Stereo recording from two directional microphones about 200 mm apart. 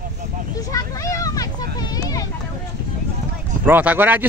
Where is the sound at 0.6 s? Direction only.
15° left (ahead or behind).